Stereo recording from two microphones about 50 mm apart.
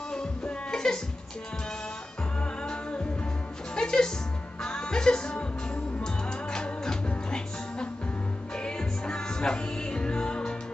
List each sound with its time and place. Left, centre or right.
0.1 s music: centre
2.6 s music: centre
6.5 s music: centre